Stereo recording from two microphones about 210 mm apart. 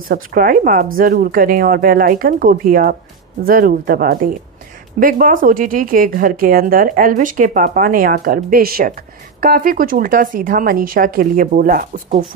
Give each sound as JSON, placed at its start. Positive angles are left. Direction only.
{"t": 0.1, "sound": "speech", "side_deg": -45}